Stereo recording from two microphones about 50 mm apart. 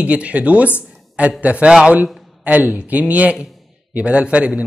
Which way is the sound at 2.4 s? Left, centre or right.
Right.